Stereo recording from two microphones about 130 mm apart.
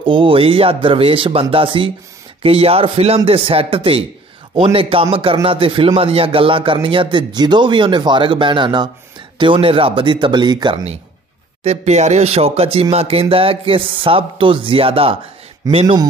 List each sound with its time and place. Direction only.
0.0 s a man's voice: 40° right (ahead or behind)
11.6 s speech: 55° right (ahead or behind)